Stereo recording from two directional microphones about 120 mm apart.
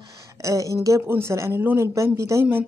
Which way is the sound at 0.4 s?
25° right (ahead or behind).